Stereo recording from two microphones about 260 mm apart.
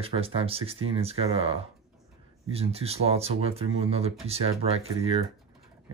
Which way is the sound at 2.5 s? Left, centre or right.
Right.